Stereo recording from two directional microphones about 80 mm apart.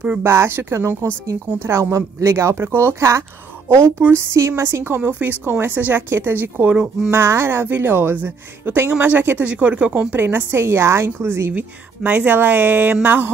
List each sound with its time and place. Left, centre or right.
0.2 s a woman's voice: right